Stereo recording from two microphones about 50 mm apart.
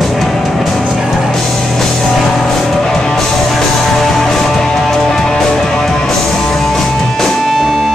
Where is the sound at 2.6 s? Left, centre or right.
Centre.